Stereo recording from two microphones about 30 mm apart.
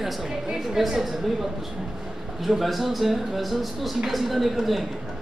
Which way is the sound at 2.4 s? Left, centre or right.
Centre.